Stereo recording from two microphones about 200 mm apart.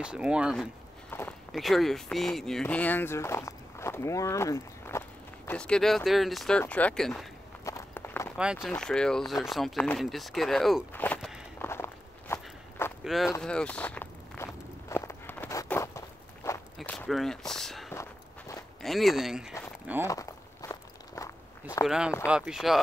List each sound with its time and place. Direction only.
0.0 s speech: 5° right (ahead or behind)
1.1 s a sound: 10° left (ahead or behind)
1.5 s speech: centre (ahead or behind)
7.6 s walk: 15° left (ahead or behind)
8.6 s speech: 5° left (ahead or behind)
11.6 s walk: 10° left (ahead or behind)
13.0 s speech: centre (ahead or behind)
13.4 s walk: 5° left (ahead or behind)
18.8 s speech: centre (ahead or behind)
20.1 s walk: 15° left (ahead or behind)
21.8 s speech: 5° right (ahead or behind)